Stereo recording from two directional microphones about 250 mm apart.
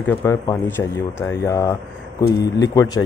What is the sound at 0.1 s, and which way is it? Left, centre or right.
Speech, centre.